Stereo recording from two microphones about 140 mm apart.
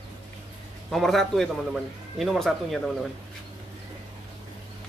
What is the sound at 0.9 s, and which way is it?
A man's voice, centre (ahead or behind).